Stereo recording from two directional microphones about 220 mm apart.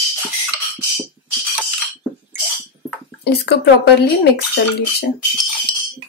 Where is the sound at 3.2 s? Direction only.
50° left (ahead or behind).